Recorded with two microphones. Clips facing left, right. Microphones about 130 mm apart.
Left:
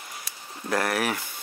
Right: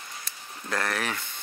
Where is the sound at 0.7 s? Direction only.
25° left (ahead or behind).